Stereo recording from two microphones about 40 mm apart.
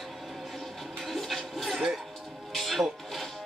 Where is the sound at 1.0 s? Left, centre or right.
Centre.